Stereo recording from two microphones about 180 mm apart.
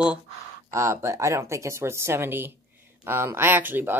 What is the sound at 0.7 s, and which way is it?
Speech, 15° right (ahead or behind).